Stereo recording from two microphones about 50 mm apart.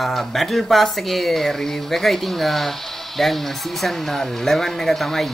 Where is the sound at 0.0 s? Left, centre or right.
Centre.